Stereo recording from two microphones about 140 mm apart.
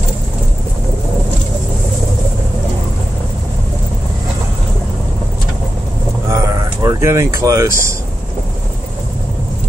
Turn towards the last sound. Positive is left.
turn(degrees=-20)  # may be behind; listen again after turning